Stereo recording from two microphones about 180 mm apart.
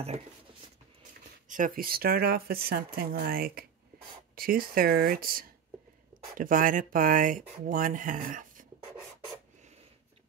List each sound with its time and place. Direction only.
1.5 s speech: 50° right (ahead or behind)